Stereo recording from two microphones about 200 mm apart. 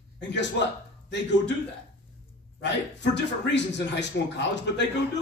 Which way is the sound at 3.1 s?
60° left (ahead or behind).